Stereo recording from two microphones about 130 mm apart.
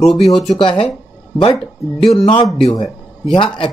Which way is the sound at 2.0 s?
Centre (ahead or behind).